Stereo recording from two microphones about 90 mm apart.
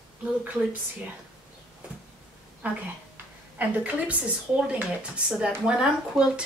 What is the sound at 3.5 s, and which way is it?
Speech, 15° right (ahead or behind).